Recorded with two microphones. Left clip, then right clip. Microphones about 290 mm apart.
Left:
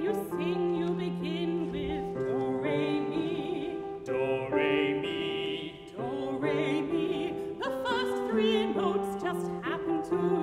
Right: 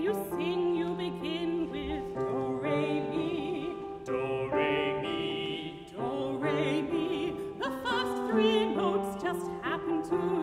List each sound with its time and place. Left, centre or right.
0.0 s music: centre
2.6 s music: centre
4.1 s music: centre
6.4 s music: centre